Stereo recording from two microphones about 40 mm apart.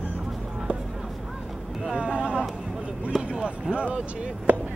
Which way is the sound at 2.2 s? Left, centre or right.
Right.